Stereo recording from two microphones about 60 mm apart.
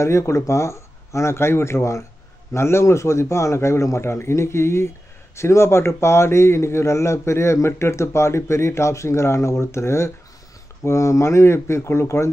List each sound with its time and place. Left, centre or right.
0.0 s a man's voice: left